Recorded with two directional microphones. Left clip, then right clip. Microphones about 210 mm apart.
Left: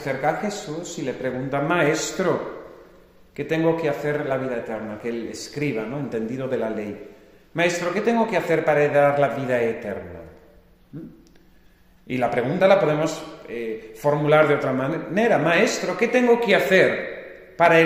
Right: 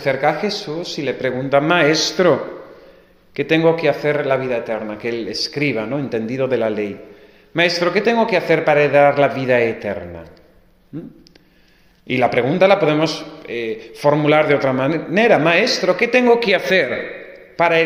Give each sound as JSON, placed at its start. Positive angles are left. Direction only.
{"t": 0.0, "sound": "a man's voice", "side_deg": -35}
{"t": 3.3, "sound": "a man's voice", "side_deg": -35}
{"t": 12.1, "sound": "a man's voice", "side_deg": -35}